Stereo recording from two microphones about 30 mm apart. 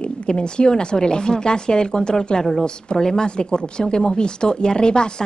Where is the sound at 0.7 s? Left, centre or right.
Left.